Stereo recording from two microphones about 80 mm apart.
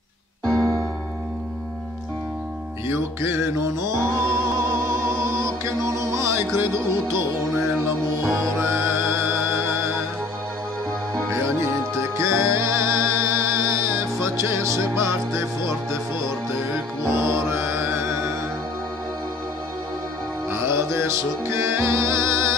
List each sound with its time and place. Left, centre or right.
2.9 s music: right
8.5 s music: right
11.1 s music: right
17.1 s music: right
20.4 s music: right